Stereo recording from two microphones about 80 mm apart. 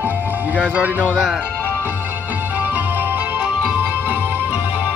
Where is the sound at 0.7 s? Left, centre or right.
Right.